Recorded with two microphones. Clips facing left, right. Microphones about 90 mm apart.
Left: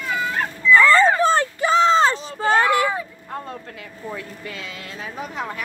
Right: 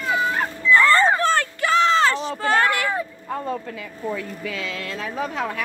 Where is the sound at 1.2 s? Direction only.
20° left (ahead or behind).